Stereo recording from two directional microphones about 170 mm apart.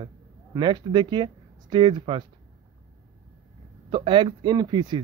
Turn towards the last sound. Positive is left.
turn(degrees=-25)  # may be behind; listen again after turning